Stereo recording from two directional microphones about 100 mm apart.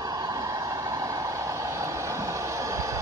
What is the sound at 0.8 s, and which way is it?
Vehicle, 30° right (ahead or behind).